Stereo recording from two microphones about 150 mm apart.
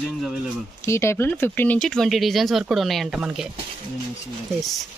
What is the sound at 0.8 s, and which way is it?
Speech, 15° left (ahead or behind).